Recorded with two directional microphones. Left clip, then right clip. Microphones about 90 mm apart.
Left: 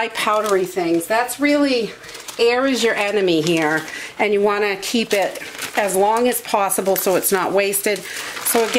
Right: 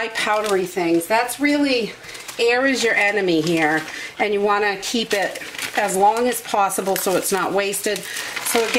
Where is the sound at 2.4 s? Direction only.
45° left (ahead or behind).